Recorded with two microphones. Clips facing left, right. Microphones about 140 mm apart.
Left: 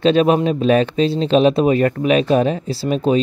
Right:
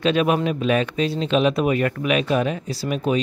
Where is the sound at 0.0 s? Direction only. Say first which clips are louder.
Left 5 dB; 30° left (ahead or behind).